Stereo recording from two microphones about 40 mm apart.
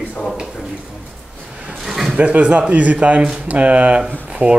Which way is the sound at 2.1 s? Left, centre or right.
Right.